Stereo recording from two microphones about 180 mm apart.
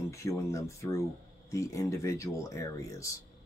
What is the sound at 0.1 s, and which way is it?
Speech, 15° left (ahead or behind).